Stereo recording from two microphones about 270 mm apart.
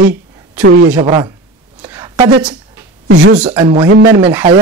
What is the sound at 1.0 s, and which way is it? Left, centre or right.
Speech, centre.